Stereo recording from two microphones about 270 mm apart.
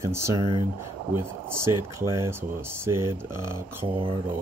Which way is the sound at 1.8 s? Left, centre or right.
Centre.